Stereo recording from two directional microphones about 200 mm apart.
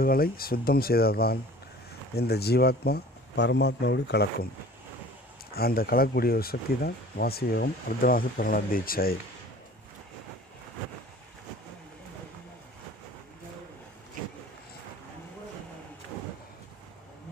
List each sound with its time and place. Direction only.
0.0 s speech: 50° left (ahead or behind)
5.5 s speech: 50° left (ahead or behind)